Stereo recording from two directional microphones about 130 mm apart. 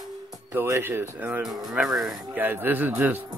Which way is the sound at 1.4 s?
Centre (ahead or behind).